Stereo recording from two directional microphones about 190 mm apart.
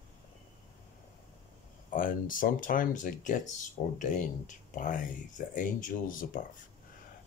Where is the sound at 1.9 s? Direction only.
45° left (ahead or behind).